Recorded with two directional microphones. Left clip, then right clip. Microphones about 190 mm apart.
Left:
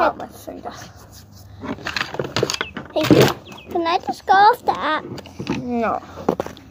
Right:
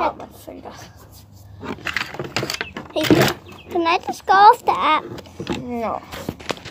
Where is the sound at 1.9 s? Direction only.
5° left (ahead or behind).